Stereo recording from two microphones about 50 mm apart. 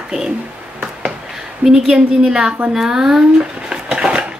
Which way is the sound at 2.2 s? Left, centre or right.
Centre.